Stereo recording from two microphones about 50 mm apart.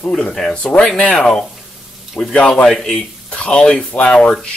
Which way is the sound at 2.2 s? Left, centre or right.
Left.